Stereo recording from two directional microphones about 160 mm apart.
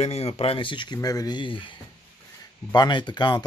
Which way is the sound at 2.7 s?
30° left (ahead or behind).